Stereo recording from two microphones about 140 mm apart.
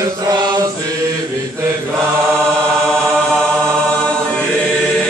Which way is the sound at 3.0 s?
5° left (ahead or behind).